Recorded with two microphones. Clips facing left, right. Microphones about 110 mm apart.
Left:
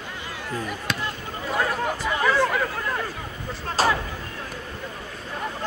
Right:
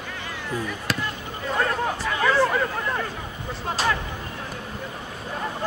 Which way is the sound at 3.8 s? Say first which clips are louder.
Left 3 dB; 40° left (ahead or behind).